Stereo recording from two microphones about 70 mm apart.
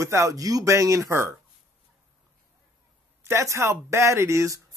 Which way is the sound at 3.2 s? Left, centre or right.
Right.